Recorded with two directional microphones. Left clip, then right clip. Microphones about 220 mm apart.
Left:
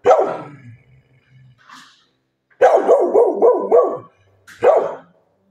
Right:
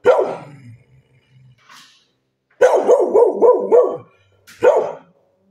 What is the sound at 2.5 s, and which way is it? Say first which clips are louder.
Dog: even; 10° right (ahead or behind).